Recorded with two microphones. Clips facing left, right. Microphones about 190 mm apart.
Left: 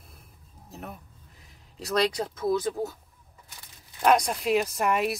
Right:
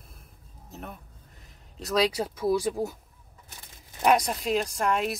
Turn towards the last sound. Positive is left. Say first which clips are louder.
# left 1 dB
turn(degrees=5)  # may be behind; listen again after turning